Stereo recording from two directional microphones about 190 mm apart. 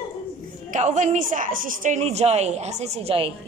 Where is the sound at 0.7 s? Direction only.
40° right (ahead or behind).